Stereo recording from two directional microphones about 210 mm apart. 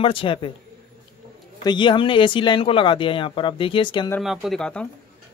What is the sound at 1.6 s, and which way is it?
Speech, 20° left (ahead or behind).